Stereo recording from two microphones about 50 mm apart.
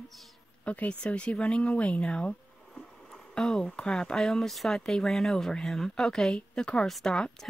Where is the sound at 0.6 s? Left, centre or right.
Left.